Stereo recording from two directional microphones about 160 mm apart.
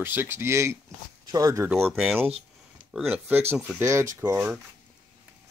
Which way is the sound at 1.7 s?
Centre (ahead or behind).